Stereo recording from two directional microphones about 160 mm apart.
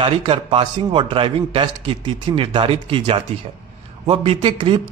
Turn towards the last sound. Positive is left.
turn(degrees=-30)  # may be behind; listen again after turning